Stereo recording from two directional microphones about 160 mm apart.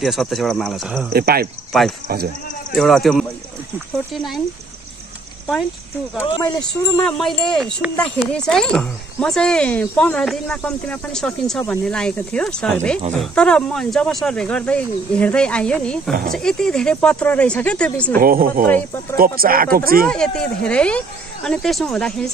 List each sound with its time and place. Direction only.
0.0 s speech: centre (ahead or behind)
1.1 s speech: 75° right (ahead or behind)
1.7 s speech: centre (ahead or behind)
6.4 s speech: 5° left (ahead or behind)
18.2 s speech: 65° right (ahead or behind)
20.1 s speech: 5° left (ahead or behind)